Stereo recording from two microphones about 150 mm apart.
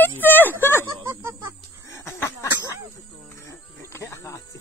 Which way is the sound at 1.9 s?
15° left (ahead or behind).